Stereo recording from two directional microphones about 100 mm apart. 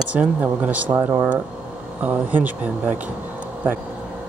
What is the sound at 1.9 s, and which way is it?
Speech, 15° right (ahead or behind).